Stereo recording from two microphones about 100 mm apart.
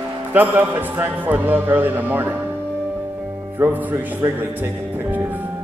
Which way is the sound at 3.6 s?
20° right (ahead or behind).